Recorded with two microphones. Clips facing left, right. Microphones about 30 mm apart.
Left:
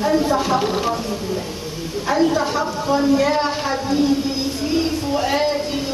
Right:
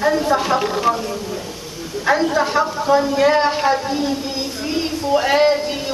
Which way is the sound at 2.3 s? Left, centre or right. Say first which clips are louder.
Right 3 dB; centre.